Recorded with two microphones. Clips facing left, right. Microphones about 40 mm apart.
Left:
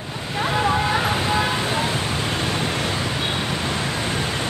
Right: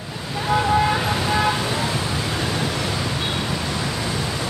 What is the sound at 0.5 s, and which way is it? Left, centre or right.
Vehicle, left.